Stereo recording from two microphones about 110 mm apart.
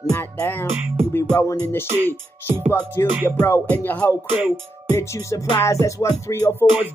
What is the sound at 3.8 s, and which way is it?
Music, 20° left (ahead or behind).